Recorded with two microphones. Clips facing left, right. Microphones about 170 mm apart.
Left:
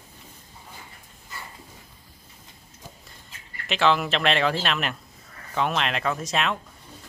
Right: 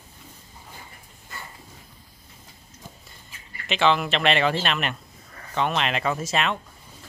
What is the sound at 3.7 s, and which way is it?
Speech, centre (ahead or behind).